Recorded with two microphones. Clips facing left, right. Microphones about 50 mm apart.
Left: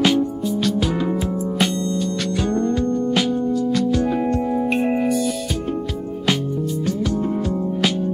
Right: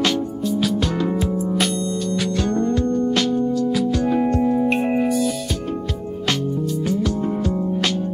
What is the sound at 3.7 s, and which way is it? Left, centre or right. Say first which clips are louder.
Music: even; centre.